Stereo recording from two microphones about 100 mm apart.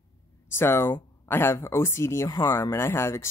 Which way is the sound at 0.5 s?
25° left (ahead or behind).